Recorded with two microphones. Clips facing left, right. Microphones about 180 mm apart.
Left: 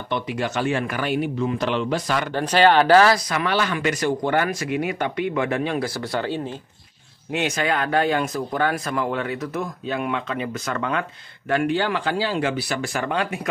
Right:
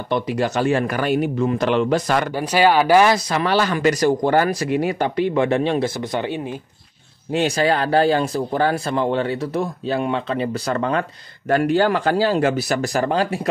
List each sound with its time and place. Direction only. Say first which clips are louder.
0.1 s a man's voice: right 5 dB; 40° right (ahead or behind)
2.3 s speech: left 1 dB; 10° right (ahead or behind)
3.3 s speech: right 4 dB; 35° right (ahead or behind)
6.1 s speech: left 2 dB; 15° right (ahead or behind)
7.3 s speech: right 5 dB; 35° right (ahead or behind)